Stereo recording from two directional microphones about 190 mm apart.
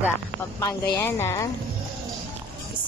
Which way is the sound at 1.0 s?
10° left (ahead or behind).